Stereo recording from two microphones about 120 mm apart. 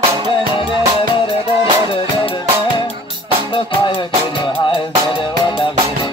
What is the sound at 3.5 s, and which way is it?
Music, 40° left (ahead or behind).